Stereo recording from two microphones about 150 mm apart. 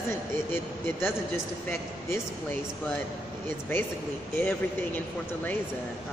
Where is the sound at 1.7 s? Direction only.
15° left (ahead or behind).